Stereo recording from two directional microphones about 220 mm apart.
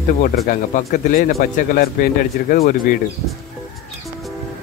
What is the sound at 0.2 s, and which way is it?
A man's voice, 40° left (ahead or behind).